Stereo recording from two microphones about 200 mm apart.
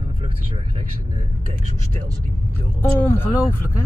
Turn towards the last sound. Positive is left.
turn(degrees=10)  # may be behind; listen again after turning